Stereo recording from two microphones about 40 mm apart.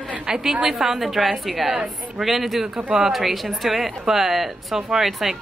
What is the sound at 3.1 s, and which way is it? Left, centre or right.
A woman's voice, centre.